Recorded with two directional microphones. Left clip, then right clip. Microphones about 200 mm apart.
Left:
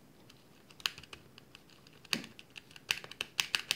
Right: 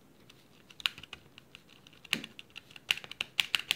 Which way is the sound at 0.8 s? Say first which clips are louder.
Right 3 dB; 20° right (ahead or behind).